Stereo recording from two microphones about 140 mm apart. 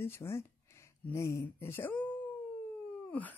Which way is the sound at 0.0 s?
15° left (ahead or behind).